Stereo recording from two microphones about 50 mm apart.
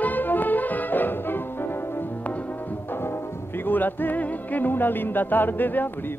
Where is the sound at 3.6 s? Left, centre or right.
Left.